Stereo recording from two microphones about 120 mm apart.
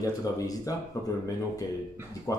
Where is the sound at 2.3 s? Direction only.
30° left (ahead or behind).